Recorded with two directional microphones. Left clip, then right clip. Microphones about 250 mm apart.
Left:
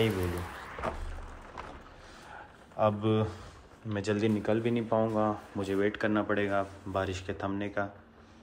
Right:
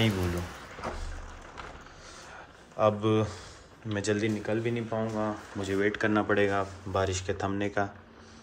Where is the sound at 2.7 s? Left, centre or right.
Centre.